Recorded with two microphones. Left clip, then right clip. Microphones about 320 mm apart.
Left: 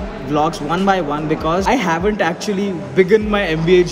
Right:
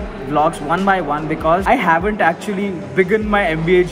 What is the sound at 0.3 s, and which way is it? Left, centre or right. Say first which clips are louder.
Speech: right 2 dB; centre.